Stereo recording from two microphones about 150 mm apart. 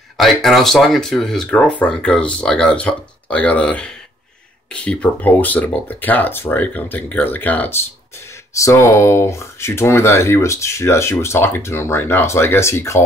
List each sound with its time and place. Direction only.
0.2 s speech: centre (ahead or behind); by 13.0 s 20° left (ahead or behind)